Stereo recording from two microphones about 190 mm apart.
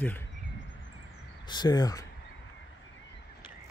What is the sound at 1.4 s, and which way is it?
Speech, 20° left (ahead or behind).